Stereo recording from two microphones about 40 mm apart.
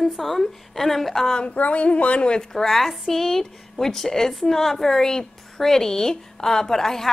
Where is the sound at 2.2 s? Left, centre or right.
Centre.